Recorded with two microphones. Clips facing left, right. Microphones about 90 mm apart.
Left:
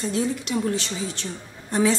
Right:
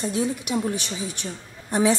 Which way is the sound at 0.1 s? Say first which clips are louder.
Left 2 dB; 15° right (ahead or behind).